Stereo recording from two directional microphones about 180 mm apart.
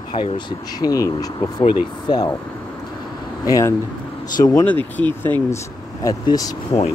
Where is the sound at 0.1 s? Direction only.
25° left (ahead or behind).